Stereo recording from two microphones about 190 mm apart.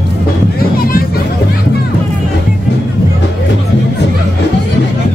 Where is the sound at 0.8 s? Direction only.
50° left (ahead or behind).